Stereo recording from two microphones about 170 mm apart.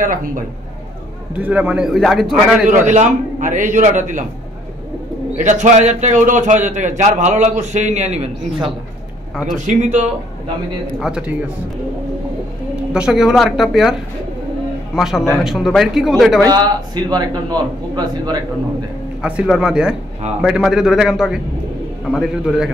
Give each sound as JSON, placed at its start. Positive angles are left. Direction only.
{"t": 0.0, "sound": "a man's voice", "side_deg": -50}
{"t": 1.3, "sound": "a man's voice", "side_deg": -10}
{"t": 2.9, "sound": "a man's voice", "side_deg": -45}
{"t": 5.4, "sound": "a man's voice", "side_deg": -45}
{"t": 9.7, "sound": "a man's voice", "side_deg": -45}
{"t": 11.0, "sound": "a man's voice", "side_deg": -5}
{"t": 12.9, "sound": "a man's voice", "side_deg": -5}
{"t": 15.0, "sound": "a man's voice", "side_deg": 0}
{"t": 16.4, "sound": "a man's voice", "side_deg": -25}
{"t": 19.2, "sound": "a man's voice", "side_deg": -5}